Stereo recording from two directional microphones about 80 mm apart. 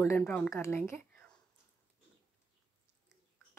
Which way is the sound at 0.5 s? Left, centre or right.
Left.